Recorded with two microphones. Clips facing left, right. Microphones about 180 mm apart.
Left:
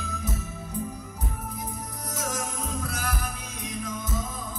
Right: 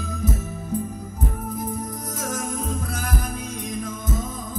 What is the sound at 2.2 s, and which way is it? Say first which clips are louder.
Music: right 3 dB; 45° right (ahead or behind).